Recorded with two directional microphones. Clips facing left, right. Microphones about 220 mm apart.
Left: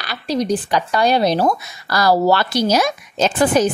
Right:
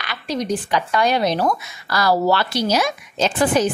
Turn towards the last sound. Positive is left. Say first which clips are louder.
# left 2 dB
turn(degrees=45)  # may be behind; listen again after turning